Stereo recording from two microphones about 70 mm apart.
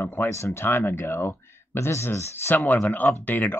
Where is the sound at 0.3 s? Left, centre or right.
Left.